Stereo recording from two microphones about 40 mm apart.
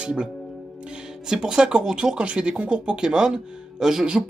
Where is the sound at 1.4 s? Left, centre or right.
Right.